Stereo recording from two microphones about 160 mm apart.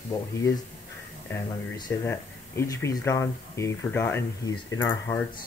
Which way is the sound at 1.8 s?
15° left (ahead or behind).